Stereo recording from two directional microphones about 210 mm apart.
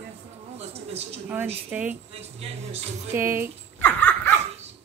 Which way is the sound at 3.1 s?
10° right (ahead or behind).